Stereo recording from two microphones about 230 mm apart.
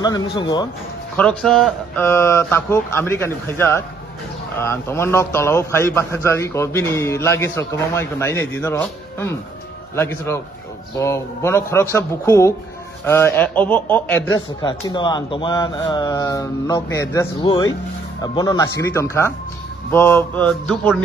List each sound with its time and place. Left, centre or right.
0.0 s a man's voice: centre
1.1 s a man's voice: centre
14.6 s a man's voice: centre